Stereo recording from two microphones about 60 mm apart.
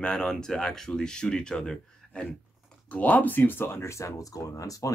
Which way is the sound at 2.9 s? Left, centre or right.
Left.